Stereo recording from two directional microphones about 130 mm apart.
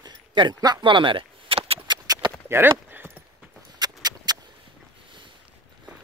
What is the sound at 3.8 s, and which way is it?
Horse, 30° right (ahead or behind).